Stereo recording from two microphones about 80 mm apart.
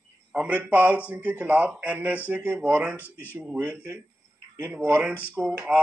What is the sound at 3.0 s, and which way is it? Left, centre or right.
Speech, left.